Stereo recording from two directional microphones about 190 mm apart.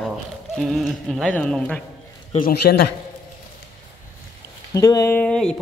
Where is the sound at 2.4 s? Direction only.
55° left (ahead or behind).